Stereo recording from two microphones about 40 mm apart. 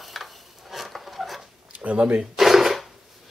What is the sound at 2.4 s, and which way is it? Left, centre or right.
Dishes, centre.